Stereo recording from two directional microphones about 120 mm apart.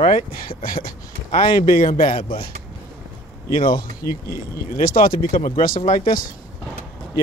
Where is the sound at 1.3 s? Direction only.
90° left.